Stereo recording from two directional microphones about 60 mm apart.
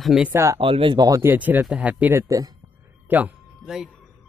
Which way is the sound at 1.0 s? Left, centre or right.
Right.